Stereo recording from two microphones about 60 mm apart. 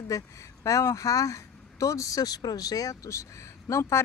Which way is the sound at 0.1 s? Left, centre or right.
Left.